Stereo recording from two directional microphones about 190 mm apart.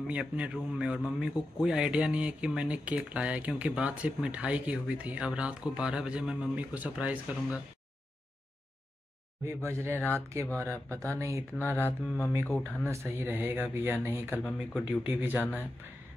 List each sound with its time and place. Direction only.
0.0 s a man's voice: 5° right (ahead or behind)
9.7 s a man's voice: 15° right (ahead or behind)
9.9 s mantra: 10° left (ahead or behind)
10.6 s a man's voice: 15° right (ahead or behind)
11.5 s mantra: 10° left (ahead or behind)
12.9 s a man's voice: 15° right (ahead or behind)
14.4 s speech: 5° left (ahead or behind)
15.3 s mantra: 10° left (ahead or behind)